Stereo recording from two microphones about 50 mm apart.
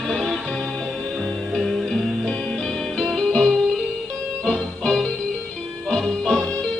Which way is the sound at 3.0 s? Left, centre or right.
Centre.